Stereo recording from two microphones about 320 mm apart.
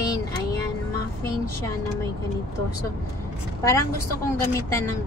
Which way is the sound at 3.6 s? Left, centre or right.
Centre.